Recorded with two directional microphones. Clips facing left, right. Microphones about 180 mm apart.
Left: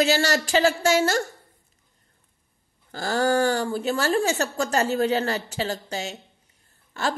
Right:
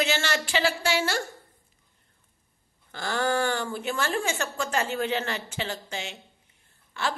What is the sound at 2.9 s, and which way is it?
Speech, 40° left (ahead or behind).